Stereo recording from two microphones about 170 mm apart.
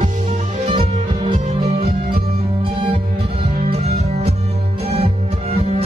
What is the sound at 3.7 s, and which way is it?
Music, 40° right (ahead or behind).